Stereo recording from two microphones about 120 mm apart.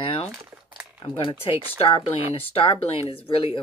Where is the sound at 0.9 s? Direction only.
45° left (ahead or behind).